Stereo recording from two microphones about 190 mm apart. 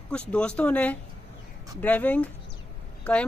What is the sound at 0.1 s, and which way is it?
A woman's voice, 5° left (ahead or behind).